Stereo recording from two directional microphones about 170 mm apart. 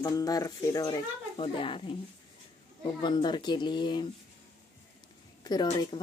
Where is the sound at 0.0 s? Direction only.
20° left (ahead or behind).